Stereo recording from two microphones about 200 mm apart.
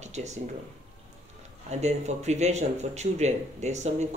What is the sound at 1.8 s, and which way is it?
Speech, 35° right (ahead or behind).